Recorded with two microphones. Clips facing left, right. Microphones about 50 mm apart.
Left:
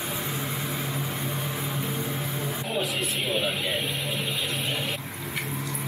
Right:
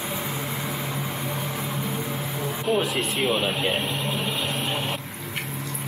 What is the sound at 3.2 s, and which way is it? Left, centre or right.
Vehicle, right.